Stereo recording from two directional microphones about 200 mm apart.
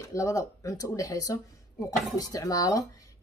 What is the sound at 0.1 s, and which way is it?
Speech, 15° left (ahead or behind).